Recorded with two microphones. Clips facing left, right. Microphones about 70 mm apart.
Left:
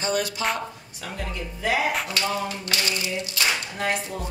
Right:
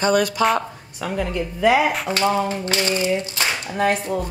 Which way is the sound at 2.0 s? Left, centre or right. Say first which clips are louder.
Right 7 dB; right.